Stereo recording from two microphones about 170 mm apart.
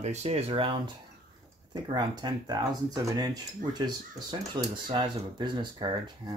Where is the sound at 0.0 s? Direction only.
40° right (ahead or behind).